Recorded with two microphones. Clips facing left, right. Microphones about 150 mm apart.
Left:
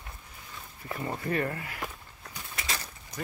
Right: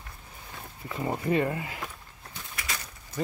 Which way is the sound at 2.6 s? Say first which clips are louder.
Left 1 dB; 25° left (ahead or behind).